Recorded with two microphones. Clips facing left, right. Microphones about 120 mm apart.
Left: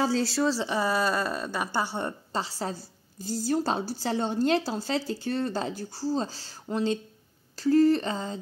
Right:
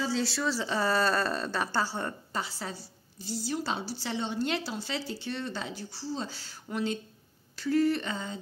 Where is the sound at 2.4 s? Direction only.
40° left (ahead or behind).